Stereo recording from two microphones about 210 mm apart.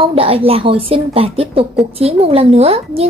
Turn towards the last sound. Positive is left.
turn(degrees=-30)  # may be behind; listen again after turning